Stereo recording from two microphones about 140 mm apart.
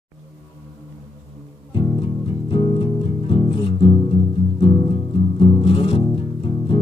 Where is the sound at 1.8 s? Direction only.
35° left (ahead or behind).